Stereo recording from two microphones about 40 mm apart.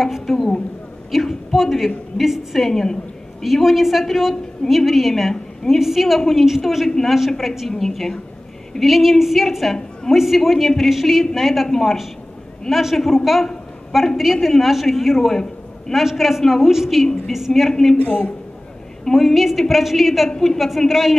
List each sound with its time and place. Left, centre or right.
0.0 s a woman's voice: centre
2.6 s a woman's voice: centre
3.6 s a woman's voice: centre
5.3 s a sound: centre
5.8 s a woman's voice: centre
16.7 s a woman's voice: centre
17.6 s a woman's voice: centre
17.9 s a woman's voice: left
19.0 s a woman's voice: centre
20.5 s a woman's voice: centre